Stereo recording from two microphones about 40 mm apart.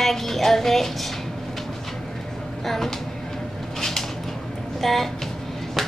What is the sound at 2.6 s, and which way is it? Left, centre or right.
Speech, centre.